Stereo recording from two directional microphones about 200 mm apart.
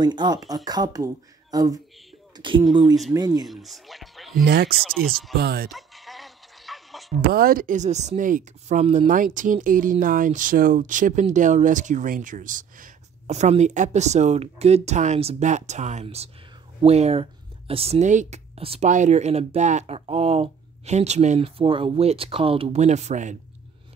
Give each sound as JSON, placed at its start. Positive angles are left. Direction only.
{"t": 0.0, "sound": "speech", "side_deg": -20}
{"t": 3.4, "sound": "speech", "side_deg": 0}
{"t": 4.5, "sound": "speech", "side_deg": -50}
{"t": 5.7, "sound": "a sound", "side_deg": 0}
{"t": 7.2, "sound": "speech", "side_deg": -45}